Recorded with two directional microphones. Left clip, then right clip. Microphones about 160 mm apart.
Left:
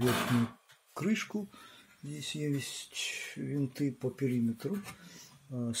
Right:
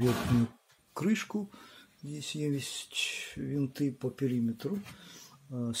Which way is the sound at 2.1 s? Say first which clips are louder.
Right 1 dB; centre (ahead or behind).